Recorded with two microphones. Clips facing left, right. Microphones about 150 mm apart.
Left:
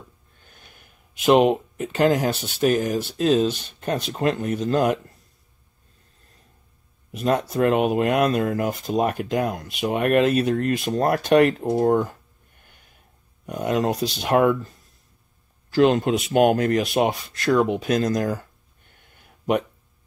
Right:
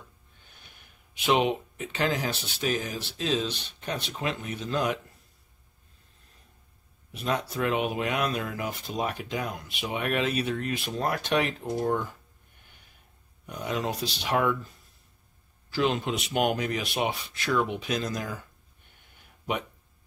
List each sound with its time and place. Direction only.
1.2 s speech: 45° left (ahead or behind)
7.1 s speech: 45° left (ahead or behind)
13.5 s speech: 45° left (ahead or behind)
15.7 s speech: 45° left (ahead or behind)